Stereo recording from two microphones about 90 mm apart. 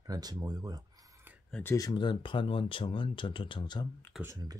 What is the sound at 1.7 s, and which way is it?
Speech, 45° left (ahead or behind).